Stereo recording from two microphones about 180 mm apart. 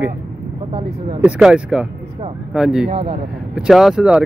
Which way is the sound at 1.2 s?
5° right (ahead or behind).